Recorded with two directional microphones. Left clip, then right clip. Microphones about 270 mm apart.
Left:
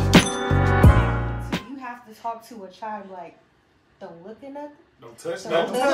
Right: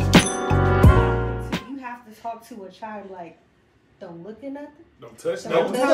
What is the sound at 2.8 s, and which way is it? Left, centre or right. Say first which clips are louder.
Speech: left 4 dB; centre.